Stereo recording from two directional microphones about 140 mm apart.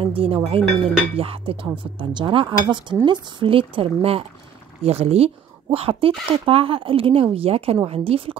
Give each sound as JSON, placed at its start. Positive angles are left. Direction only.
{"t": 0.0, "sound": "speech", "side_deg": -40}